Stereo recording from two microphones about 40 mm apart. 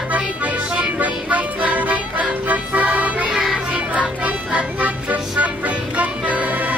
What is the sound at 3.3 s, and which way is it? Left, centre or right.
Music, centre.